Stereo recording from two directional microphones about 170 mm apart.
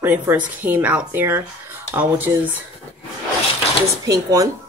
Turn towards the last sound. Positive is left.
turn(degrees=-20)  # may be behind; listen again after turning